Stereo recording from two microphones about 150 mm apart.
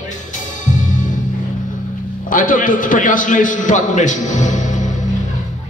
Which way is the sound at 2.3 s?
65° left (ahead or behind).